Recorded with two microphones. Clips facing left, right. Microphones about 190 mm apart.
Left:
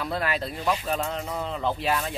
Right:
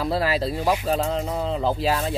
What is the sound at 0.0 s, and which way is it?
Speech, 35° right (ahead or behind).